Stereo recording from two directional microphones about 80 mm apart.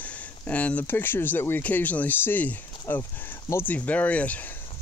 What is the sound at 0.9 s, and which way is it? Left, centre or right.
Speech, left.